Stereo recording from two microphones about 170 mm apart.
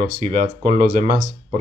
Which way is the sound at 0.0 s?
45° right (ahead or behind).